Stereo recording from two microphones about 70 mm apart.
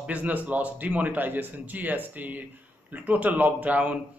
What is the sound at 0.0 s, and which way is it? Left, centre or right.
A man's voice, centre.